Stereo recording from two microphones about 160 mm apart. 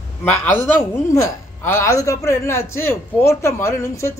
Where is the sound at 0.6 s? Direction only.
15° left (ahead or behind).